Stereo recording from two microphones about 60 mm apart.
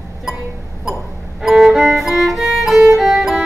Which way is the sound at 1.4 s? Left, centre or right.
Centre.